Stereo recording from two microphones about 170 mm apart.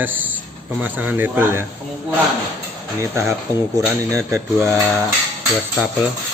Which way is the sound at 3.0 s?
15° right (ahead or behind).